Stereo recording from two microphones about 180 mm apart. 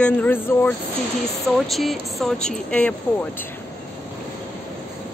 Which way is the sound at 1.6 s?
Centre (ahead or behind).